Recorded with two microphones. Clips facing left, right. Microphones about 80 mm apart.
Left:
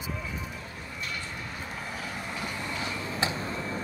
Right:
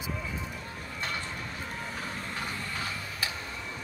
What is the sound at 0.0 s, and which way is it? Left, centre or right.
Music, centre.